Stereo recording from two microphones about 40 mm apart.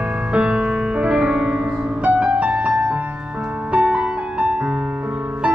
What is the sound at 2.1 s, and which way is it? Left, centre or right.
Music, right.